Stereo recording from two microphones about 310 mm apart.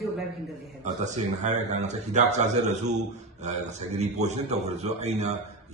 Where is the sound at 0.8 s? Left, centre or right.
Right.